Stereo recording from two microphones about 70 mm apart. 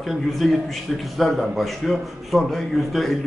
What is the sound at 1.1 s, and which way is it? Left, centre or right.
A man's voice, centre.